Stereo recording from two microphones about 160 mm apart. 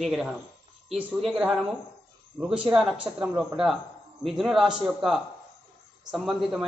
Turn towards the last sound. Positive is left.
turn(degrees=0)  # may be behind; listen again after turning